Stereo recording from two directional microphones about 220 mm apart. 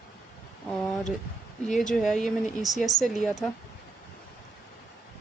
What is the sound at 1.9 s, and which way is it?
Speech, centre (ahead or behind).